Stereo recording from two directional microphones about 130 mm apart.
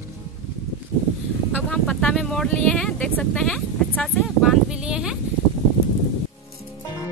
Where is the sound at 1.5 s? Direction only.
5° left (ahead or behind).